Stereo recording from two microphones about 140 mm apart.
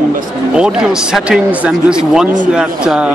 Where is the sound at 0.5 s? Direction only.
5° right (ahead or behind).